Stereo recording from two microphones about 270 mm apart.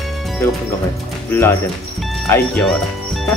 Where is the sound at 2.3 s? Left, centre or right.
Centre.